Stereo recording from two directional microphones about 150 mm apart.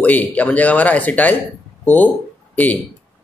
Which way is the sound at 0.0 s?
10° left (ahead or behind).